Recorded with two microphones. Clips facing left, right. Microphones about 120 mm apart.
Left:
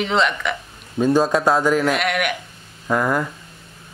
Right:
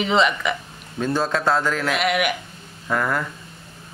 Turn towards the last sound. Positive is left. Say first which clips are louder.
# left 3 dB
turn(degrees=15)  # may be behind; listen again after turning